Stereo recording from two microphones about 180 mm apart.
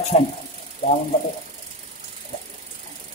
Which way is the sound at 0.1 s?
40° left (ahead or behind).